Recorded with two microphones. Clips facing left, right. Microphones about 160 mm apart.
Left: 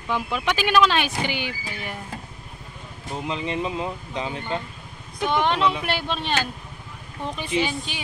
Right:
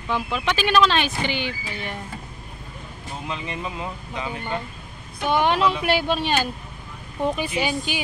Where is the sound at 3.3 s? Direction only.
20° left (ahead or behind).